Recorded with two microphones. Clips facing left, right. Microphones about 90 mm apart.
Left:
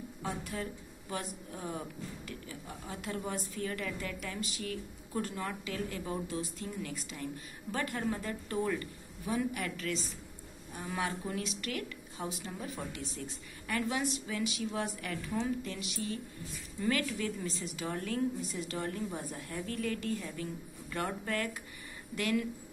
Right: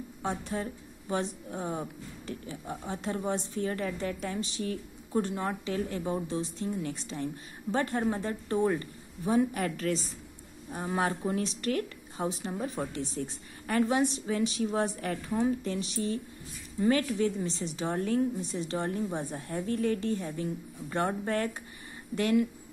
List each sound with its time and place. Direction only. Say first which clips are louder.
0.2 s a woman's voice: right 5 dB; 30° right (ahead or behind)